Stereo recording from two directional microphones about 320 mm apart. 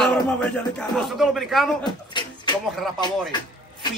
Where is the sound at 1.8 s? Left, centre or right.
Centre.